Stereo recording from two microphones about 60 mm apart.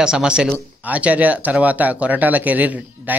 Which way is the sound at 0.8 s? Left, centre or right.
Right.